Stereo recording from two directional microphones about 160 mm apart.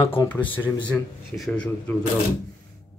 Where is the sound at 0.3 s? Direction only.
10° left (ahead or behind).